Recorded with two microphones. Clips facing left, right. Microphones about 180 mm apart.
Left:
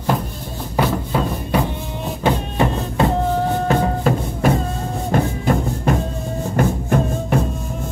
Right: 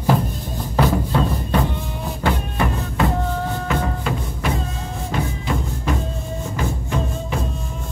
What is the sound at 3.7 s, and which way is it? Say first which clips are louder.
Music: left 5 dB; 45° left (ahead or behind).